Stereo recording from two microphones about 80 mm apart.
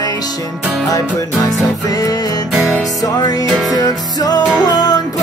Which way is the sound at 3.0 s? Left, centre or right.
Left.